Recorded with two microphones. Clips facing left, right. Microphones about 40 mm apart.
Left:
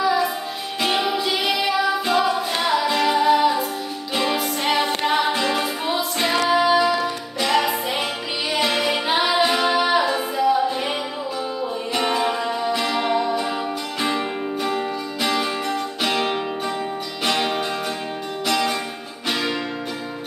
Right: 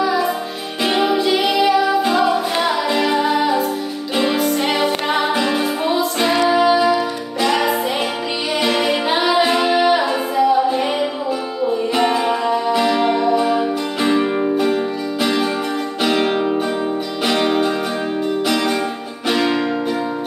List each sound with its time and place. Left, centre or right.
0.8 s music: centre
6.3 s music: centre
6.6 s music: centre
12.0 s music: centre
16.0 s music: centre